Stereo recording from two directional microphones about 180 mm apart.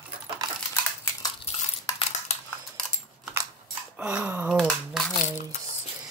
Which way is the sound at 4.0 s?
10° right (ahead or behind).